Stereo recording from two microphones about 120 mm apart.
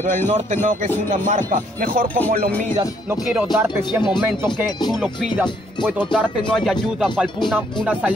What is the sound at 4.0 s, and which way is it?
Speech, 40° left (ahead or behind).